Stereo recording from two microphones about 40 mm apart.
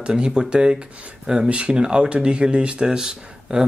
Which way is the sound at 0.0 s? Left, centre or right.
Right.